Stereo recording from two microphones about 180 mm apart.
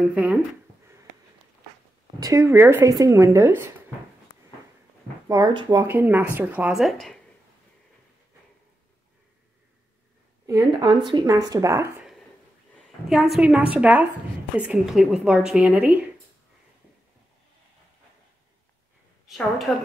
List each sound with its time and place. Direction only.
0.0 s speech: 5° right (ahead or behind)
2.1 s speech: 20° right (ahead or behind)
4.3 s a sound: 25° left (ahead or behind)
5.3 s speech: 25° right (ahead or behind); by 7.2 s centre (ahead or behind)
10.4 s speech: 15° right (ahead or behind)
12.7 s a woman's voice: centre (ahead or behind)
19.2 s a woman's voice: centre (ahead or behind)